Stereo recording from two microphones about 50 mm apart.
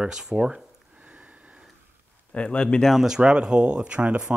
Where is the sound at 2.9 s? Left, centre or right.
Centre.